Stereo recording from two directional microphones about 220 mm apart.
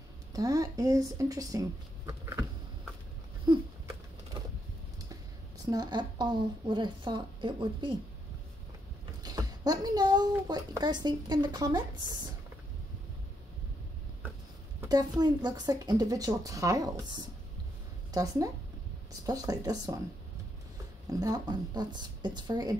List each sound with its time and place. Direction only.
0.3 s speech: 15° right (ahead or behind)
3.5 s a sound: 20° right (ahead or behind)
5.7 s a woman's voice: 20° right (ahead or behind)
9.2 s speech: 15° right (ahead or behind)
14.8 s a woman's voice: 15° right (ahead or behind)
21.1 s a woman's voice: 15° right (ahead or behind)